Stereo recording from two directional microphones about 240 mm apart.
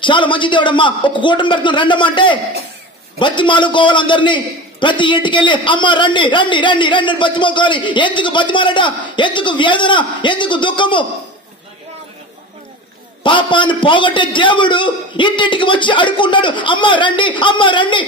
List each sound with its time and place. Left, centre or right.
0.0 s a man's voice: centre
13.2 s a man's voice: centre